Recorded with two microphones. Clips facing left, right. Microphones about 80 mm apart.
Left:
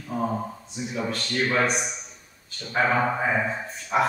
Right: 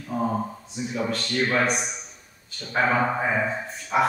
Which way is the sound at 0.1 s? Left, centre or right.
Centre.